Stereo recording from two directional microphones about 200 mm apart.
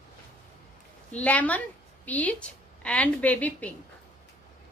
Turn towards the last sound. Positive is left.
turn(degrees=5)  # may be behind; listen again after turning